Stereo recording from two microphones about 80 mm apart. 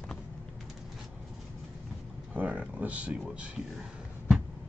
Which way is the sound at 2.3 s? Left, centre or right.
Centre.